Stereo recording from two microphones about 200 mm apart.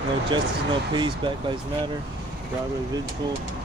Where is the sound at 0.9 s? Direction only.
25° right (ahead or behind).